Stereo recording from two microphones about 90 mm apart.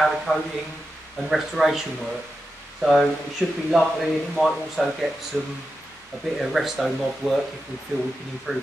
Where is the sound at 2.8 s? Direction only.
Centre (ahead or behind).